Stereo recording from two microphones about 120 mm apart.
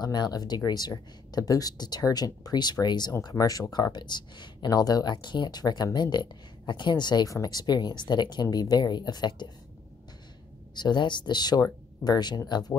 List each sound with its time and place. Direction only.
0.0 s speech: 35° left (ahead or behind)
10.7 s speech: 35° left (ahead or behind)